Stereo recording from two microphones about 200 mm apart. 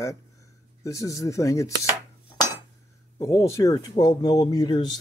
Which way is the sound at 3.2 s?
15° left (ahead or behind).